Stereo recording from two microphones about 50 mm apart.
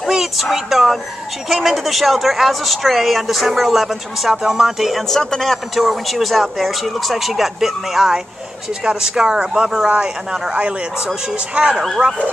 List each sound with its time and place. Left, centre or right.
0.0 s a sound: centre
1.5 s a woman's voice: centre
5.1 s a woman's voice: centre
11.7 s a woman's voice: centre